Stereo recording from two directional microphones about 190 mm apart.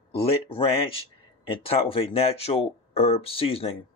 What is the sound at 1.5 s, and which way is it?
Speech, 30° left (ahead or behind).